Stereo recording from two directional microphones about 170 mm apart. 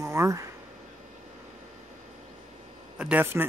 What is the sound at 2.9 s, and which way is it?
Speech, 10° right (ahead or behind).